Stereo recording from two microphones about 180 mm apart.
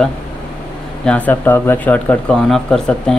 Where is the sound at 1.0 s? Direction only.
10° left (ahead or behind).